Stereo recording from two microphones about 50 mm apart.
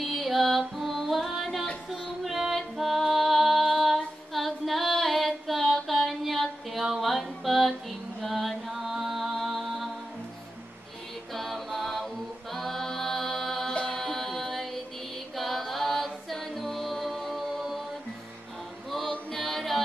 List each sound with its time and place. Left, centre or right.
0.0 s music: centre
11.3 s a capella: centre
12.5 s music: centre
18.9 s chant: centre